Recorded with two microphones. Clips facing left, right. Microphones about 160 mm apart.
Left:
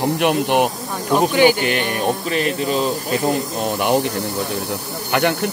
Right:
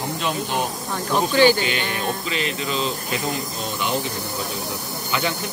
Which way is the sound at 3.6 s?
60° left (ahead or behind).